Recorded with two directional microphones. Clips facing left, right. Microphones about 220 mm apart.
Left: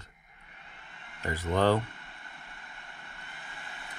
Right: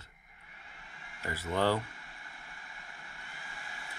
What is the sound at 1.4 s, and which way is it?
Speech, 50° left (ahead or behind).